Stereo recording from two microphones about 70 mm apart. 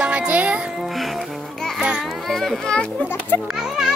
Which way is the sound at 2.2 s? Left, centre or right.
Centre.